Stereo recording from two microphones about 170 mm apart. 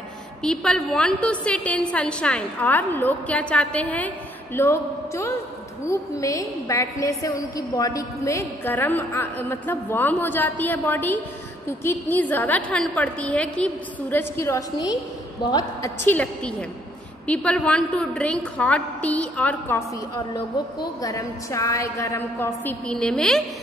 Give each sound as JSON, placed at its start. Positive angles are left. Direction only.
{"t": 0.4, "sound": "a woman's voice", "side_deg": 5}
{"t": 21.0, "sound": "a woman's voice", "side_deg": 20}